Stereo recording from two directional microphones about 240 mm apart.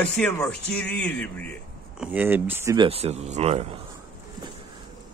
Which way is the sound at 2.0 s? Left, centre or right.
Centre.